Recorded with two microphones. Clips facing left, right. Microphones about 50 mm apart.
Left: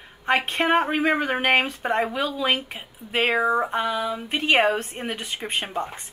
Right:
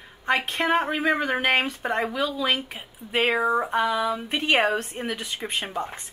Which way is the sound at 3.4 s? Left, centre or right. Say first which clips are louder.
Left 1 dB; centre.